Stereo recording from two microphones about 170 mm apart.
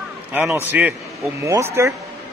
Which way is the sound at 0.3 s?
10° right (ahead or behind).